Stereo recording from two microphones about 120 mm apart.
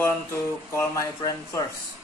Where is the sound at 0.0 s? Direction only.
20° left (ahead or behind).